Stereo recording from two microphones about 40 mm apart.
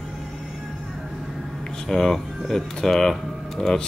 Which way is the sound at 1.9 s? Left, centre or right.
Centre.